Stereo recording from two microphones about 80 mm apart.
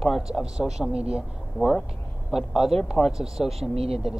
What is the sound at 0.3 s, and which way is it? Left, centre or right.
Speech, centre.